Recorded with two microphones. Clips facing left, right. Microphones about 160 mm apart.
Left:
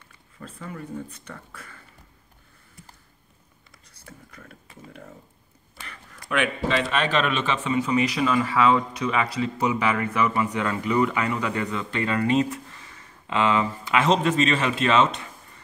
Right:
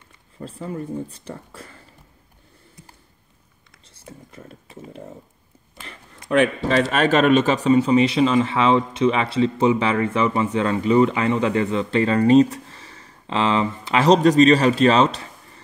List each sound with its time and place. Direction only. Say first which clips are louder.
0.4 s speech: right 7 dB; 30° right (ahead or behind)
3.8 s a sound: right 5 dB; 25° right (ahead or behind)
6.3 s speech: right 6 dB; 40° right (ahead or behind)